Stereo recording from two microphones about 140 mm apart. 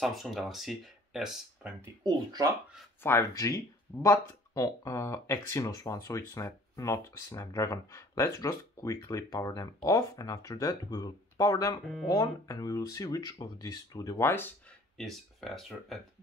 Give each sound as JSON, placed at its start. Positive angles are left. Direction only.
{"t": 0.0, "sound": "speech", "side_deg": 0}
{"t": 2.0, "sound": "speech", "side_deg": -30}
{"t": 3.0, "sound": "speech", "side_deg": 20}
{"t": 15.0, "sound": "speech", "side_deg": 0}